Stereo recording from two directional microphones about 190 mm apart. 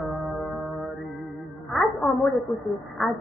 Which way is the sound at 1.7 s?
Centre (ahead or behind).